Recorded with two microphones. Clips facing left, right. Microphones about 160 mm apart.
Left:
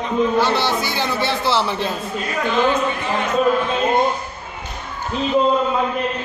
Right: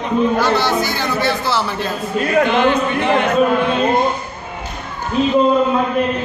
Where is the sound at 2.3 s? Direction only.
65° right (ahead or behind).